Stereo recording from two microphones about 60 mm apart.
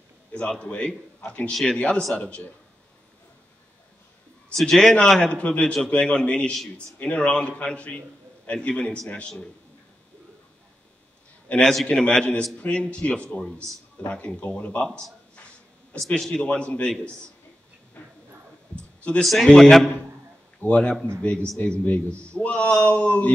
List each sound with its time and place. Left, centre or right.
0.3 s a man's voice: centre
4.6 s a man's voice: centre
11.6 s a man's voice: centre
11.9 s a man's voice: centre
15.3 s a sound: left
16.2 s a man's voice: centre
16.4 s a man's voice: left
18.0 s dog: left
18.8 s a sound: centre
19.2 s a man's voice: centre
20.5 s a man's voice: left